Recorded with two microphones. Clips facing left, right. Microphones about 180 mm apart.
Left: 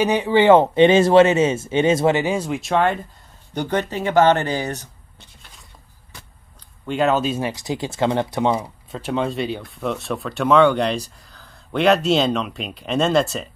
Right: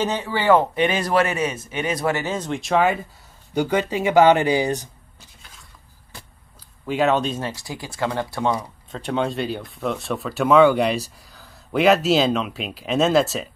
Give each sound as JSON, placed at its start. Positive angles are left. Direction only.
{"t": 0.0, "sound": "speech", "side_deg": 15}
{"t": 5.2, "sound": "a sound", "side_deg": 0}
{"t": 6.9, "sound": "speech", "side_deg": 0}
{"t": 8.9, "sound": "speech", "side_deg": 0}